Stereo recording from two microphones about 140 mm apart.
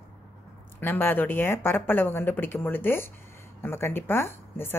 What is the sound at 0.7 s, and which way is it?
A woman's voice, 15° left (ahead or behind).